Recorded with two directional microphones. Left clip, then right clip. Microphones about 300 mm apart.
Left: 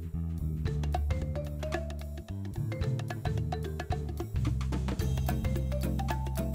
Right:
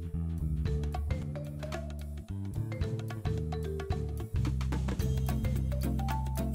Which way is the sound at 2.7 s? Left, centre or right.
Centre.